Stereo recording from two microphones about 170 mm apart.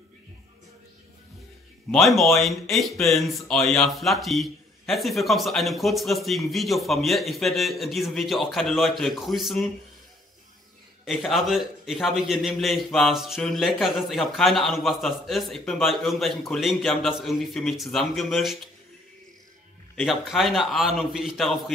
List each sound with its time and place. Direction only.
1.9 s speech: centre (ahead or behind)
11.1 s speech: centre (ahead or behind)
20.0 s speech: centre (ahead or behind)